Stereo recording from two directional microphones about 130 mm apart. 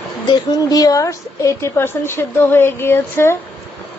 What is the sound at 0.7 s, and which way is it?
A woman's voice, 30° left (ahead or behind).